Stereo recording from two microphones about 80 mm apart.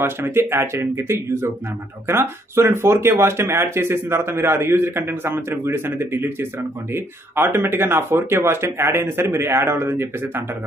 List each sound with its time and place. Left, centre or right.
0.0 s speech: right